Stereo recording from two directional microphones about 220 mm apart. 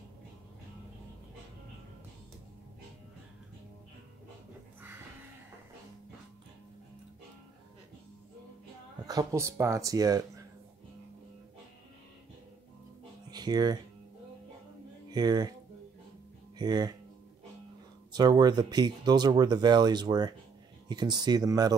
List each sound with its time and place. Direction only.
9.0 s speech: 15° right (ahead or behind)
13.3 s a sound: 20° right (ahead or behind)
15.0 s speech: 20° right (ahead or behind)
16.5 s speech: 20° right (ahead or behind)
18.1 s speech: 20° right (ahead or behind)